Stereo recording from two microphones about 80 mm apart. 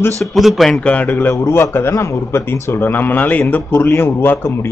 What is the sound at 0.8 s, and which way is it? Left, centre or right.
Speech, centre.